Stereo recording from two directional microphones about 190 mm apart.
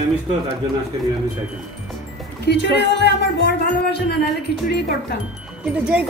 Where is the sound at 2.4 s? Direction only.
65° left (ahead or behind).